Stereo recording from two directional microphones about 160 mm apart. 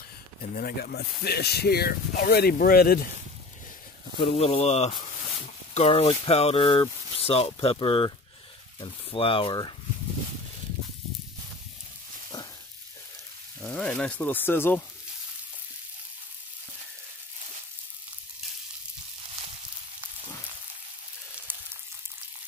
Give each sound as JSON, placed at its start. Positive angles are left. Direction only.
{"t": 0.6, "sound": "speech", "side_deg": 70}
{"t": 4.2, "sound": "speech", "side_deg": 40}
{"t": 9.1, "sound": "speech", "side_deg": 35}
{"t": 13.7, "sound": "speech", "side_deg": 5}